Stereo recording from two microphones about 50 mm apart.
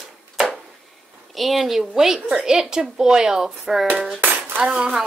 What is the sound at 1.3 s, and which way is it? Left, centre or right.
A woman's voice, centre.